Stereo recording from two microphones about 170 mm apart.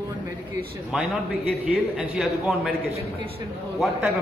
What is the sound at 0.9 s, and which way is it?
A man's voice, 5° right (ahead or behind).